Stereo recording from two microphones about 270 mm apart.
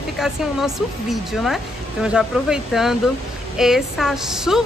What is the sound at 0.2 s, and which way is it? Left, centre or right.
A woman's voice, centre.